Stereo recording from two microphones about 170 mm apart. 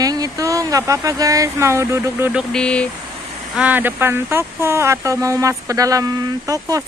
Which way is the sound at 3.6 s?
10° right (ahead or behind).